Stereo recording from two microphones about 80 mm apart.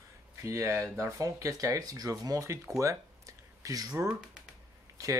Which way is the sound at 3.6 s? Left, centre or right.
Right.